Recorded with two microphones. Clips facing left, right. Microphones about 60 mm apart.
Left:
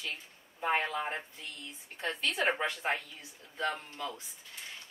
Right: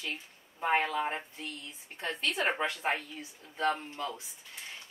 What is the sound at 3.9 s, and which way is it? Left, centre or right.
Speech, right.